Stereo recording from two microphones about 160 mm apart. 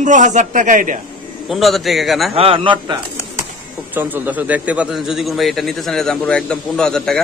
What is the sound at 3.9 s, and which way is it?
A man's voice, 10° right (ahead or behind).